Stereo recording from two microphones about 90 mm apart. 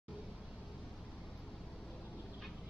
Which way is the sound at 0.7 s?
Centre (ahead or behind).